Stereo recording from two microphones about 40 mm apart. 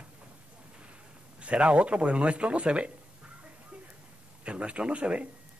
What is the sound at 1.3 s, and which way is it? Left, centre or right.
A man's voice, right.